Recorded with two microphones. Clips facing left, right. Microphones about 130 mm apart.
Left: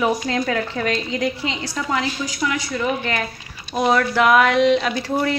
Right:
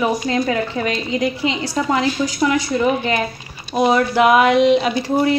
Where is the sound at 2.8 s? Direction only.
15° right (ahead or behind).